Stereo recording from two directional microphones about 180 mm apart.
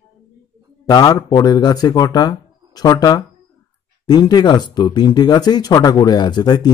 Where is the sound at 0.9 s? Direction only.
20° left (ahead or behind).